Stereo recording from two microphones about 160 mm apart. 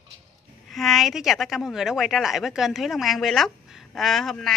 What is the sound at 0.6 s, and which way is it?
Speech, centre (ahead or behind).